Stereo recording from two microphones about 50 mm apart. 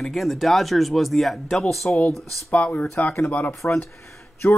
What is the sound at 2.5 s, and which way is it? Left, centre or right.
Speech, left.